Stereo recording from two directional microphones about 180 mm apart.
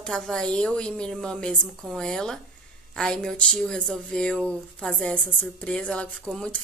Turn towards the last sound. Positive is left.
turn(degrees=5)  # may be behind; listen again after turning